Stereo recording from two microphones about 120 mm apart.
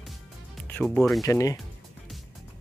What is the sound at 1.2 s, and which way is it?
Speech, 25° left (ahead or behind).